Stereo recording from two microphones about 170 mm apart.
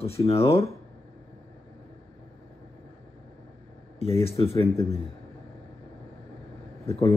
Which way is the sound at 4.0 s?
35° left (ahead or behind).